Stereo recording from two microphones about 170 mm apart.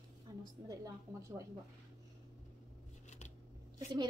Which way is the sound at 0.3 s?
20° right (ahead or behind).